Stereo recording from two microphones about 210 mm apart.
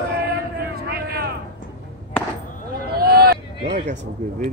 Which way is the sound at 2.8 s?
45° right (ahead or behind).